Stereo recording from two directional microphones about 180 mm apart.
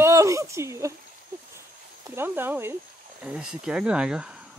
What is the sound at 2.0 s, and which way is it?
Speech, 10° right (ahead or behind).